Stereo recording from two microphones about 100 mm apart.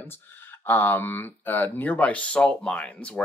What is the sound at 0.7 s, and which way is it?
Speech, 20° left (ahead or behind).